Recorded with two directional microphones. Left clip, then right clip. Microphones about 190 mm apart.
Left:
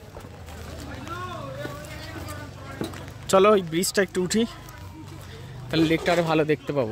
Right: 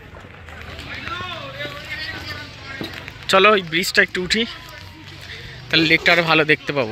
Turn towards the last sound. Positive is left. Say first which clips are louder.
# right 6 dB
turn(degrees=0)  # may be behind; listen again after turning